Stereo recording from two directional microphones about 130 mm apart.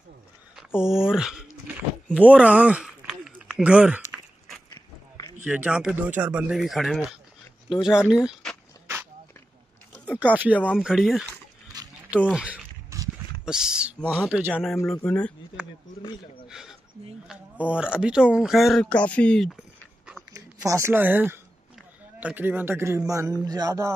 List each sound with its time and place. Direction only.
0.7 s a sound: 5° right (ahead or behind)
5.4 s speech: 10° right (ahead or behind)
10.0 s speech: 10° right (ahead or behind)
11.7 s a sound: 30° right (ahead or behind)
12.3 s speech: 5° right (ahead or behind)
12.9 s a sound: 25° right (ahead or behind)
13.5 s speech: 5° right (ahead or behind)
15.0 s speech: 10° left (ahead or behind)
16.4 s speech: 5° right (ahead or behind)
20.3 s a man's voice: 25° right (ahead or behind)